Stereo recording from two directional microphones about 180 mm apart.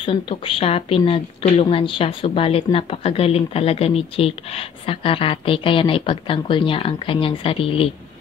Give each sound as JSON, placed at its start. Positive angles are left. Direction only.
{"t": 0.0, "sound": "speech", "side_deg": 30}